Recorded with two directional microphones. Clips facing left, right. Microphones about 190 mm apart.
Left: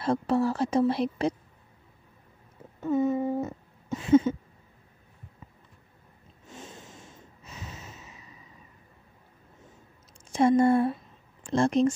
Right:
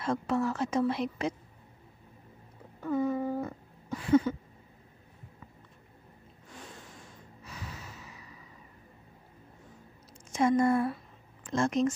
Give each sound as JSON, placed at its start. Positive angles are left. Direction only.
{"t": 0.0, "sound": "a woman's voice", "side_deg": 35}
{"t": 2.8, "sound": "a sound", "side_deg": 25}
{"t": 6.4, "sound": "snort", "side_deg": 20}
{"t": 10.3, "sound": "a woman's voice", "side_deg": 30}